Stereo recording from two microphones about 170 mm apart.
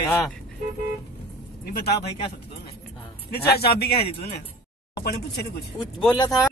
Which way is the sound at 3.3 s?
70° left (ahead or behind).